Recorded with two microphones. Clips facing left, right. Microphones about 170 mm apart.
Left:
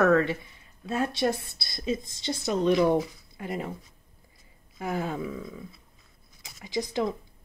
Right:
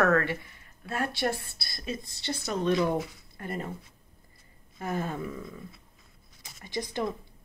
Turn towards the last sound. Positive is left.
turn(degrees=10)  # may be behind; listen again after turning